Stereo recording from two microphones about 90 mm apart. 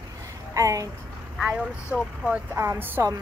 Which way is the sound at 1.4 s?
10° right (ahead or behind).